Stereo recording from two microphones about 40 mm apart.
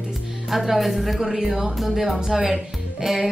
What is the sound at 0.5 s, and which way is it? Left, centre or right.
Speech, centre.